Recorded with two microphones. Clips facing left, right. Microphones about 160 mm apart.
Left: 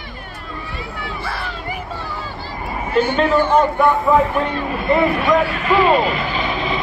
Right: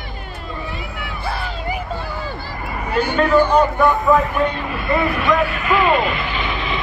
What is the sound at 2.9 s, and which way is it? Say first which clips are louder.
Speech: even; 25° left (ahead or behind).